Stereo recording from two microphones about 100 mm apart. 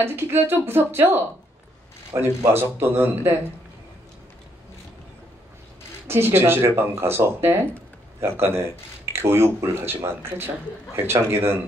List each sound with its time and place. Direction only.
0.0 s speech: 20° right (ahead or behind)
6.0 s speech: 25° right (ahead or behind)